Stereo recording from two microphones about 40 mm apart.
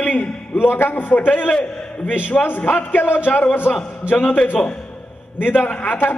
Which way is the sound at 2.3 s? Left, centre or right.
Left.